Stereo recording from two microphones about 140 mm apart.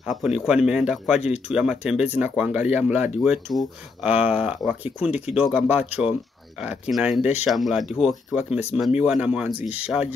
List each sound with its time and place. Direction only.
0.0 s speech: 5° right (ahead or behind)
8.4 s speech: 50° left (ahead or behind)
8.7 s speech: 5° right (ahead or behind)